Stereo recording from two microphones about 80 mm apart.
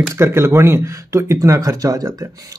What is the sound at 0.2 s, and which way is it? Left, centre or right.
A man's voice, right.